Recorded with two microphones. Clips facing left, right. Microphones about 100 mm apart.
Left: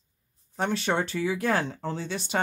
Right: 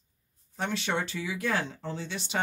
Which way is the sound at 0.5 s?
40° left (ahead or behind).